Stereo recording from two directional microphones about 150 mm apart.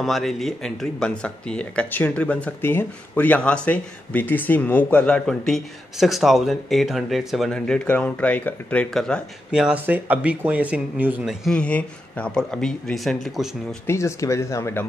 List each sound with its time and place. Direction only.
0.0 s speech: centre (ahead or behind)
11.4 s speech: 5° left (ahead or behind)
13.8 s speech: 20° left (ahead or behind)